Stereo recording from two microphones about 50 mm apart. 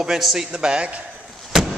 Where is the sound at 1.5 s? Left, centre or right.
Centre.